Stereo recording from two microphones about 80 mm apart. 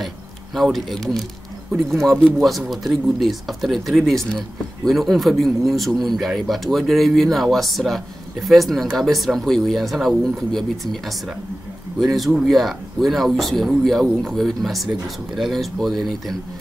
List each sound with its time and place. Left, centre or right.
0.6 s speech: centre